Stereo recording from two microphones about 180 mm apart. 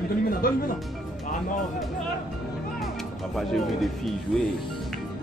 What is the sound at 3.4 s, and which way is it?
Speech, centre (ahead or behind).